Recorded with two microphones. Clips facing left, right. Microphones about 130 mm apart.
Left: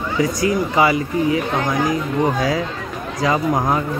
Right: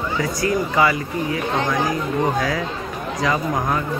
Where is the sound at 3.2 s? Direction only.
25° left (ahead or behind).